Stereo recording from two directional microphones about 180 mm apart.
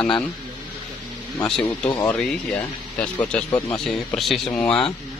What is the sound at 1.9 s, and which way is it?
Speech, 5° left (ahead or behind).